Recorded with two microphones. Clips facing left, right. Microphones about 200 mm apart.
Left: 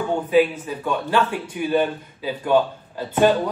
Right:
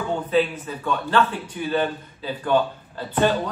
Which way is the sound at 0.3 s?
10° left (ahead or behind).